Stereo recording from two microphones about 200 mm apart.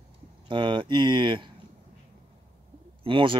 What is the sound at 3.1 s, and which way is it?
Speech, 25° right (ahead or behind).